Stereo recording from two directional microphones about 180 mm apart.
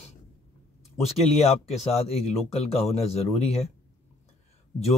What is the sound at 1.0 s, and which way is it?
Speech, 35° left (ahead or behind).